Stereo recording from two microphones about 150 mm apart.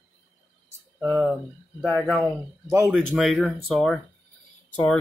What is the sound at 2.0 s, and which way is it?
Speech, 5° left (ahead or behind).